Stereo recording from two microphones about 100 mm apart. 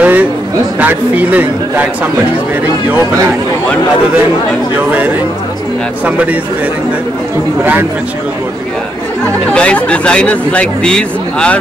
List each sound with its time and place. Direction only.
0.0 s a sound: 15° right (ahead or behind)
0.7 s a man's voice: 15° right (ahead or behind)
9.5 s speech: 10° left (ahead or behind)